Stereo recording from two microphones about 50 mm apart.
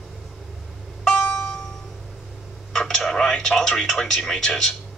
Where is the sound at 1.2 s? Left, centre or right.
Centre.